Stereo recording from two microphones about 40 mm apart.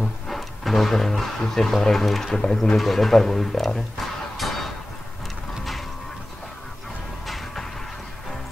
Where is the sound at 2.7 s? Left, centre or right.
Centre.